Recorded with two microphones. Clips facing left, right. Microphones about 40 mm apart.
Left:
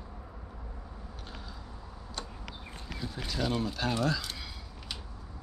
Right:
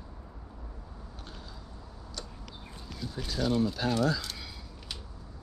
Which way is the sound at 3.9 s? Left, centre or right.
Left.